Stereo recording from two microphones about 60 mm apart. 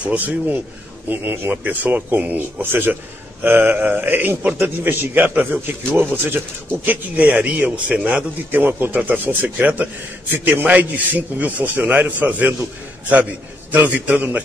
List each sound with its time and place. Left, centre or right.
0.0 s a man's voice: right
1.0 s a man's voice: right
1.5 s a man's voice: right
6.9 s a man's voice: right